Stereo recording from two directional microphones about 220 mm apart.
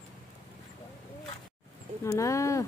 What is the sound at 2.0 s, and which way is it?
Speech, 15° left (ahead or behind).